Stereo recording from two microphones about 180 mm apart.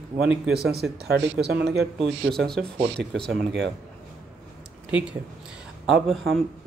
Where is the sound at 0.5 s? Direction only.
65° right (ahead or behind).